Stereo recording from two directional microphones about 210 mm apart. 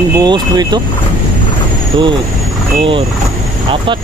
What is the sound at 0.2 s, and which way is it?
Speech, 20° right (ahead or behind).